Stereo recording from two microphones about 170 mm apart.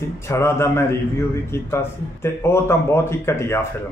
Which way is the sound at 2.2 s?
15° left (ahead or behind).